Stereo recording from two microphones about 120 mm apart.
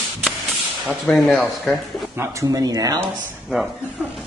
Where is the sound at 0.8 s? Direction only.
Centre (ahead or behind).